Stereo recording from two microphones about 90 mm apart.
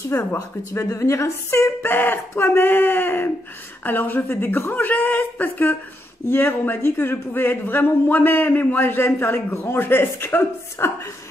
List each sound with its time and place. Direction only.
0.1 s a man's voice: 35° left (ahead or behind)